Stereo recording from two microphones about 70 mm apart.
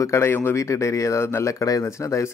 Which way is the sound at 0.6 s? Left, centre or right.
Left.